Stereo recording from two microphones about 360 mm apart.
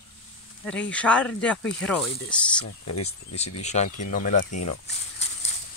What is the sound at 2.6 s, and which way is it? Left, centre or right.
Speech, left.